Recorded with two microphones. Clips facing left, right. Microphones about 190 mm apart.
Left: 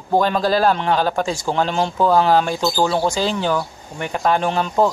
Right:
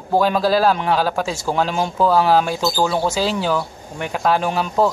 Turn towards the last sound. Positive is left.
turn(degrees=-5)  # may be behind; listen again after turning